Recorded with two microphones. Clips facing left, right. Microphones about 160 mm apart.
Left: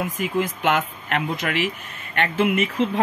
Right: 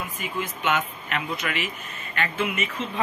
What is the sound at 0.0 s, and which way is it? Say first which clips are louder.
Speech: left 8 dB; 90° left.